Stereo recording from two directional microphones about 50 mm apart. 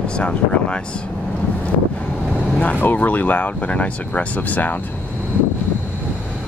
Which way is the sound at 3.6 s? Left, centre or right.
Left.